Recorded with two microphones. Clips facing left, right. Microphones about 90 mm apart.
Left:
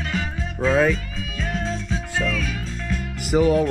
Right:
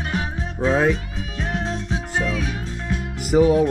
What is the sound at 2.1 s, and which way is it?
Music, 15° right (ahead or behind).